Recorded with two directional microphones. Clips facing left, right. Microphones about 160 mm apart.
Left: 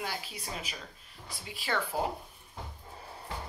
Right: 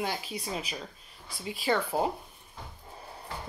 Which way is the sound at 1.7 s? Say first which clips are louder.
Right 5 dB; 15° right (ahead or behind).